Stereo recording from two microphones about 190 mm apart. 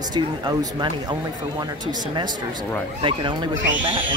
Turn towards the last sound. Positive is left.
turn(degrees=-25)  # may be behind; listen again after turning